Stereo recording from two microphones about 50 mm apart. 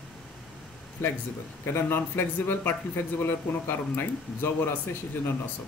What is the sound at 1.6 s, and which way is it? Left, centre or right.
Speech, left.